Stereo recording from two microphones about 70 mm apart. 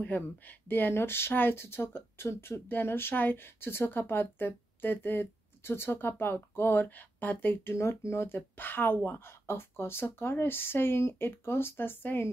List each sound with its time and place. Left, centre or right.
0.0 s speech: left